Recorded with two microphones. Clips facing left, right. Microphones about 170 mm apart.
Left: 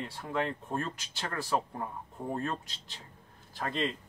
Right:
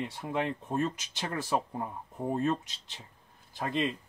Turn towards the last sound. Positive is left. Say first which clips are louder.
# right 2 dB
turn(degrees=-15)  # may be behind; listen again after turning